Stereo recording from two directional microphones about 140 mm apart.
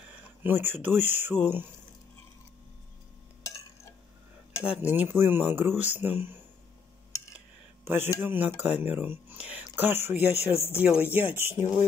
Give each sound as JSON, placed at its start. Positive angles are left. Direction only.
{"t": 0.1, "sound": "speech", "side_deg": -15}
{"t": 4.8, "sound": "speech", "side_deg": -15}
{"t": 7.8, "sound": "speech", "side_deg": -15}
{"t": 10.1, "sound": "speech", "side_deg": 45}
{"t": 10.8, "sound": "speech", "side_deg": -10}